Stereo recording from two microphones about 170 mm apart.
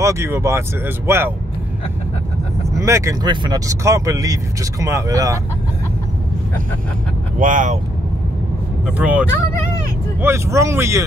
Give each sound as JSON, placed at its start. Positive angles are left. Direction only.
{"t": 0.0, "sound": "speech", "side_deg": -15}
{"t": 2.8, "sound": "speech", "side_deg": -15}
{"t": 7.3, "sound": "speech", "side_deg": -50}
{"t": 8.8, "sound": "speech", "side_deg": -10}